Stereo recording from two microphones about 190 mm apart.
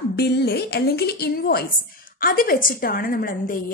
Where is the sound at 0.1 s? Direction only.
60° left (ahead or behind).